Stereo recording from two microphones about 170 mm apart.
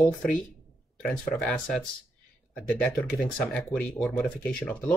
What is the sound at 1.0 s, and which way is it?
Speech, 5° left (ahead or behind).